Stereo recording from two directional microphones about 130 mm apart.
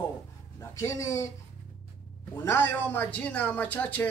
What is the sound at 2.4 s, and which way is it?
Speech, 15° left (ahead or behind).